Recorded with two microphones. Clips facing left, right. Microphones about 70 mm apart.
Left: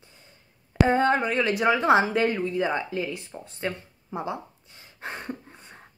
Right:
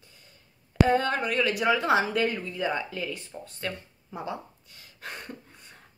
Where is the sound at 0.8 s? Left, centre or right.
Left.